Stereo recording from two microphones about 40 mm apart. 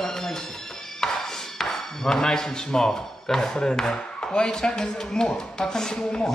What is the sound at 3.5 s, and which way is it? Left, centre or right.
Speech, left.